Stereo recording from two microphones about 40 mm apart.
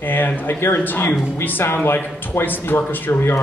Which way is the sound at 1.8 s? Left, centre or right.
Left.